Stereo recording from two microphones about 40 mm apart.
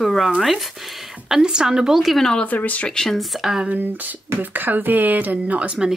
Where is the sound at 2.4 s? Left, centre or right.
Left.